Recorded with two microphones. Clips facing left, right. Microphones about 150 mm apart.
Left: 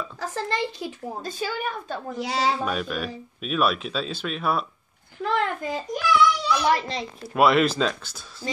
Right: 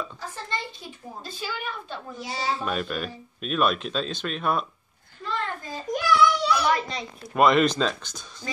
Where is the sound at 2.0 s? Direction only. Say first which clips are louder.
Left 6 dB; 80° left.